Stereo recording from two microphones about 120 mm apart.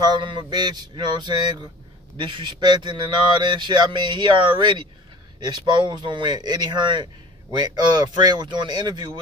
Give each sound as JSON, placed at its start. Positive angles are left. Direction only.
{"t": 0.0, "sound": "a man's voice", "side_deg": -40}